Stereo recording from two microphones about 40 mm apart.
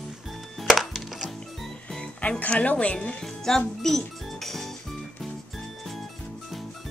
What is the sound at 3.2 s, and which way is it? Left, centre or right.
Music, centre.